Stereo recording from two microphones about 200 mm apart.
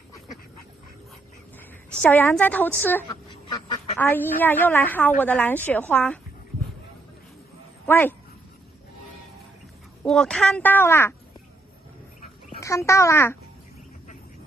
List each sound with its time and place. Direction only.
2.0 s speech: 10° left (ahead or behind)
3.1 s duck: 25° left (ahead or behind)
4.0 s speech: 10° left (ahead or behind)
7.8 s a sound: 10° left (ahead or behind)
10.0 s speech: 5° left (ahead or behind)
12.5 s speech: 15° left (ahead or behind)